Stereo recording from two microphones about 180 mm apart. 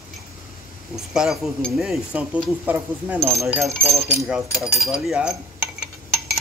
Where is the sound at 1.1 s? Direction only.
Centre (ahead or behind).